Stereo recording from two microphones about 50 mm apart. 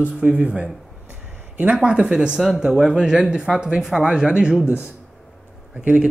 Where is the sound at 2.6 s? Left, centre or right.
Centre.